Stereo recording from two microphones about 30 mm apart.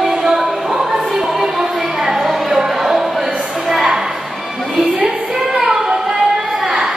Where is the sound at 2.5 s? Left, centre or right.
Centre.